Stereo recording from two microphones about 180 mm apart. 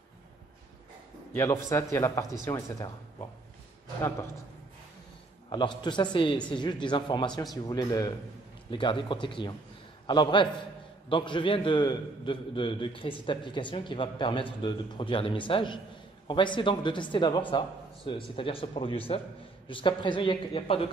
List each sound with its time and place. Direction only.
1.3 s a man's voice: 15° left (ahead or behind)
5.5 s a man's voice: 25° left (ahead or behind)